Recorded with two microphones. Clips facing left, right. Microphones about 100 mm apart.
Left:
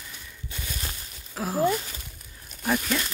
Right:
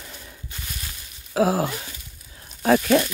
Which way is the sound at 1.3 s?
90° right.